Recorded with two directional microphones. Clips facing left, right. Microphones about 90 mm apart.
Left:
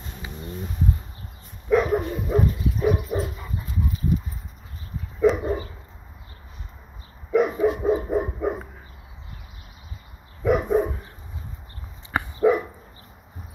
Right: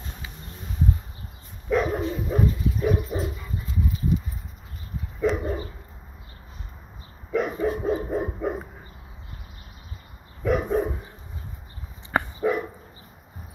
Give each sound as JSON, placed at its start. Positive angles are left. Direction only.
{"t": 1.7, "sound": "dog", "side_deg": 5}
{"t": 5.2, "sound": "dog", "side_deg": 5}
{"t": 7.3, "sound": "dog", "side_deg": 10}
{"t": 10.4, "sound": "dog", "side_deg": 10}
{"t": 12.1, "sound": "dog", "side_deg": -40}